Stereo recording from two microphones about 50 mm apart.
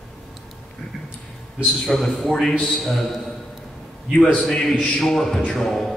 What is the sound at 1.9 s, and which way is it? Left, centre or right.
A man's voice, centre.